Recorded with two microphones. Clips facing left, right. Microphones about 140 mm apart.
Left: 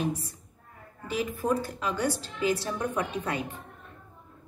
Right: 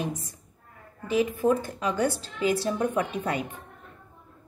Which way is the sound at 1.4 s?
25° right (ahead or behind).